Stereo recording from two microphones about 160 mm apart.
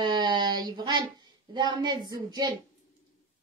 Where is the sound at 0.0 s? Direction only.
25° right (ahead or behind).